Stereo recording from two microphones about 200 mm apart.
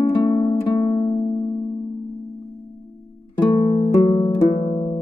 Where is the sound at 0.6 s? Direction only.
30° left (ahead or behind).